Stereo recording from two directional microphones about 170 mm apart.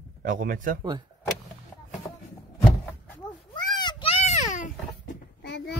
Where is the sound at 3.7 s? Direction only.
25° left (ahead or behind); by 4.7 s 45° left (ahead or behind).